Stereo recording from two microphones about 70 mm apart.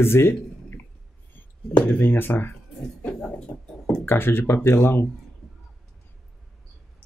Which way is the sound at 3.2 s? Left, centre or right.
Centre.